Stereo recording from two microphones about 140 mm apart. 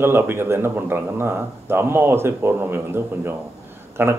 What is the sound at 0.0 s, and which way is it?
Speech, 15° right (ahead or behind).